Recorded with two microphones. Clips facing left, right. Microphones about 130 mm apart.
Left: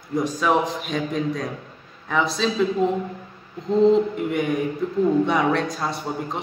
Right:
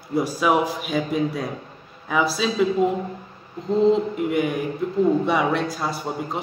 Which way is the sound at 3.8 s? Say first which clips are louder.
Left 2 dB; centre (ahead or behind).